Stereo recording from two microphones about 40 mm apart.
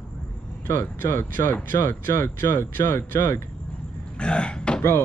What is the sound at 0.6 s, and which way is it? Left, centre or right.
Speech, left.